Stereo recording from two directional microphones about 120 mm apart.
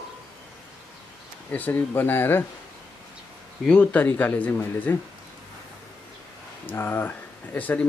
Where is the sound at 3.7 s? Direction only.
15° left (ahead or behind).